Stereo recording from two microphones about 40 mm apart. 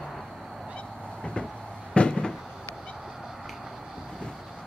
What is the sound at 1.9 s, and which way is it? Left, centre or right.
Cupboard open or close, left.